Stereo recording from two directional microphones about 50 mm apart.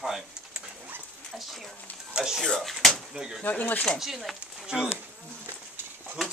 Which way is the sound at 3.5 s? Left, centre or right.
Left.